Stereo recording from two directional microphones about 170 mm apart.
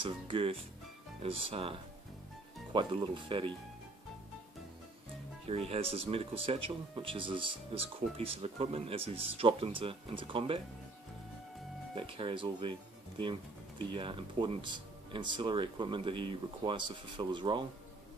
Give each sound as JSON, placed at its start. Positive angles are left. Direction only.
{"t": 0.0, "sound": "speech", "side_deg": -30}
{"t": 5.5, "sound": "speech", "side_deg": -35}
{"t": 11.9, "sound": "speech", "side_deg": -30}
{"t": 13.9, "sound": "speech", "side_deg": -30}